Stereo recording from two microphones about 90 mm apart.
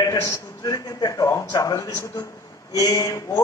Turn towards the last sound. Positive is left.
turn(degrees=40)  # may be behind; listen again after turning